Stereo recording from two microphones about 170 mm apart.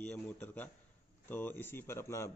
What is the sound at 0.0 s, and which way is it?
A man's voice, 5° left (ahead or behind).